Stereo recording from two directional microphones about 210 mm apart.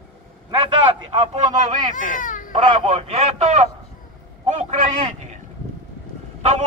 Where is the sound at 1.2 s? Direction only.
35° right (ahead or behind).